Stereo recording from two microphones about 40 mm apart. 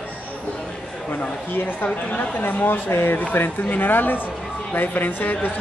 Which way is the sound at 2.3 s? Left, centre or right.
Left.